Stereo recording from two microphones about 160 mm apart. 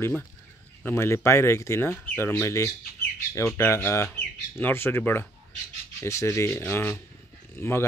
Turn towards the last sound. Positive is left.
turn(degrees=15)  # may be behind; listen again after turning